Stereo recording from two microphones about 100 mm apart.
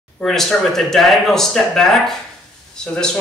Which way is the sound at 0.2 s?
5° left (ahead or behind).